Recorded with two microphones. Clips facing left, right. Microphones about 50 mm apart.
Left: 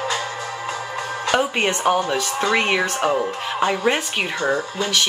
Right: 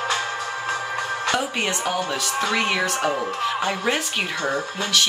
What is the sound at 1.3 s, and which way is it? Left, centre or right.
Speech, left.